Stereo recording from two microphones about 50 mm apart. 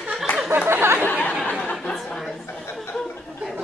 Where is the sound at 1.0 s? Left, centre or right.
Left.